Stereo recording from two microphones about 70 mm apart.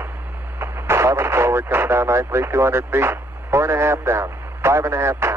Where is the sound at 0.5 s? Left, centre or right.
Right.